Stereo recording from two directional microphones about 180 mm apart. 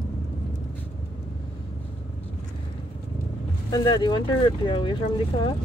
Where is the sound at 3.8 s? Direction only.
25° left (ahead or behind).